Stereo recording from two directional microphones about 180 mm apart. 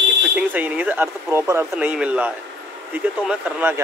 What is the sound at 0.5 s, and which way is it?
Speech, 10° right (ahead or behind).